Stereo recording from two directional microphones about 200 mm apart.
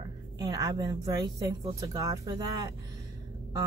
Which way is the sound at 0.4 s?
20° right (ahead or behind).